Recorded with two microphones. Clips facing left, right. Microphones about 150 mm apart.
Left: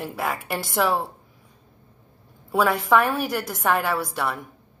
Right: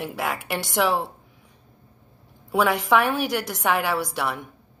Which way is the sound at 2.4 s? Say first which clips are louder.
Even; centre (ahead or behind).